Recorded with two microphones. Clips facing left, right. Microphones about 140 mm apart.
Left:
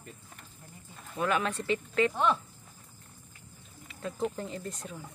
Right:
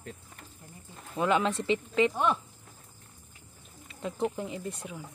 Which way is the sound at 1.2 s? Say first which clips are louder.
Right 3 dB; 25° right (ahead or behind).